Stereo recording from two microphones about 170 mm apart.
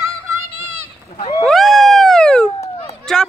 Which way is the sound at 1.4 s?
Centre (ahead or behind).